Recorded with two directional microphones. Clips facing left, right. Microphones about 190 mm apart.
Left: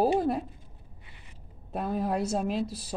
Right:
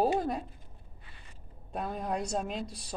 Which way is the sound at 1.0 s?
20° left (ahead or behind).